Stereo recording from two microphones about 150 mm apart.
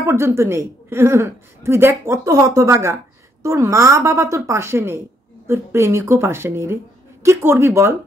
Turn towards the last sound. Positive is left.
turn(degrees=-20)  # may be behind; listen again after turning